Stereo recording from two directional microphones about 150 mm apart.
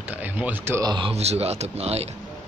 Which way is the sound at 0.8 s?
35° right (ahead or behind).